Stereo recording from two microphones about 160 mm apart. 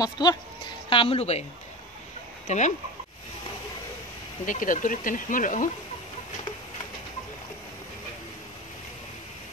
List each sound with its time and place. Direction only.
0.0 s speech: 25° left (ahead or behind)
0.8 s a woman's voice: 35° left (ahead or behind)
2.4 s speech: 50° left (ahead or behind)
4.5 s speech: 55° left (ahead or behind)